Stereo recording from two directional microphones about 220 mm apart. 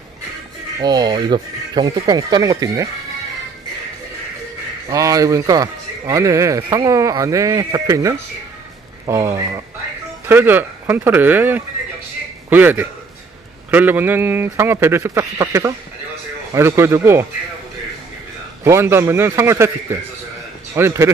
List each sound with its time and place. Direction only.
0.7 s a man's voice: 20° right (ahead or behind)
4.8 s a man's voice: 15° right (ahead or behind)
18.6 s a man's voice: 10° right (ahead or behind)